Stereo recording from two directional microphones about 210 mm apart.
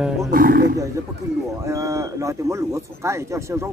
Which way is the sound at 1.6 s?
15° right (ahead or behind).